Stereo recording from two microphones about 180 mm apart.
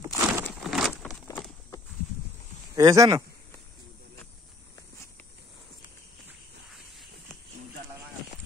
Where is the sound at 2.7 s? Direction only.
20° right (ahead or behind).